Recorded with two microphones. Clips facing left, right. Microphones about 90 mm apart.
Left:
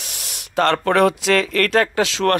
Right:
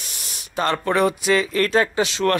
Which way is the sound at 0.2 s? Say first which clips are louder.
Left 5 dB; 85° left.